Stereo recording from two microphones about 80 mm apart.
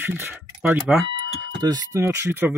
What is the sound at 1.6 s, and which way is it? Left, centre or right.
Speech, right.